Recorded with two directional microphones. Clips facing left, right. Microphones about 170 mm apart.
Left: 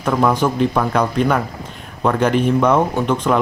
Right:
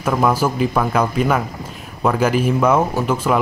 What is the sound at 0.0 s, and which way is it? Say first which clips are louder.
Speech: left 1 dB; 5° right (ahead or behind).